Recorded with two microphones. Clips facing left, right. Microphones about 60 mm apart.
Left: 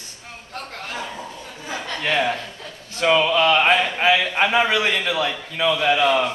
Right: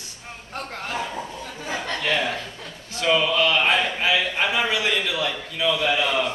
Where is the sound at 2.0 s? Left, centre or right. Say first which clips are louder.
Left 5 dB; left.